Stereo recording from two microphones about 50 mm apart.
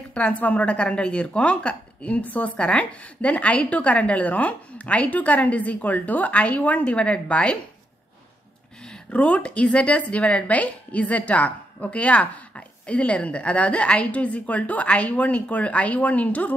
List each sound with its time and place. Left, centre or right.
0.1 s a woman's voice: left
8.8 s a woman's voice: left